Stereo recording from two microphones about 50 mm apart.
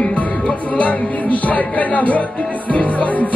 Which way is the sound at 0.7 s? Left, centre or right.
Left.